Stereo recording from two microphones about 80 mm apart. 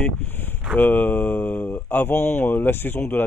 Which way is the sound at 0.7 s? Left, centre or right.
Left.